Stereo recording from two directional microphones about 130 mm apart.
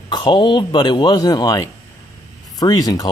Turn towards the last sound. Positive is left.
turn(degrees=30)  # may be behind; listen again after turning